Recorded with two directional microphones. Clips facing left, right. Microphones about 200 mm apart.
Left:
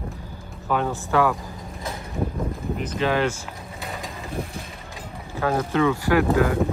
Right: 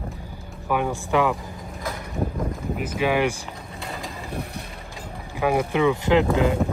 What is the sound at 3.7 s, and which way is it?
Mechanisms, centre (ahead or behind).